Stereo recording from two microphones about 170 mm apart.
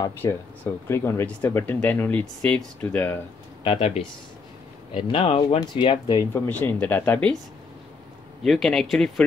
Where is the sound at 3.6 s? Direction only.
30° left (ahead or behind).